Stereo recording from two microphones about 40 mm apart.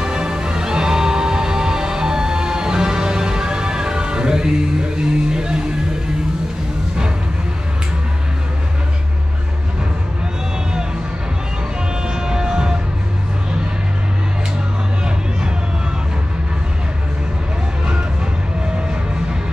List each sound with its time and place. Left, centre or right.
0.0 s music: centre
12.1 s music: centre